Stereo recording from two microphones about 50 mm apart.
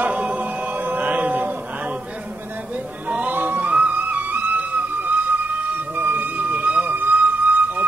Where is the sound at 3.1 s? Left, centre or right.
Right.